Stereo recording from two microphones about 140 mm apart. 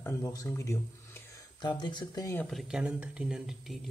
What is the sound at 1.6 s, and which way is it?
Speech, 30° left (ahead or behind).